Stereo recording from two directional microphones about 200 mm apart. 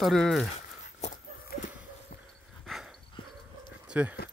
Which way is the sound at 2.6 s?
Centre (ahead or behind).